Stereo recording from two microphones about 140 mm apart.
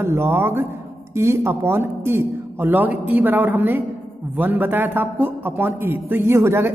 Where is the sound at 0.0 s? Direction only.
15° right (ahead or behind).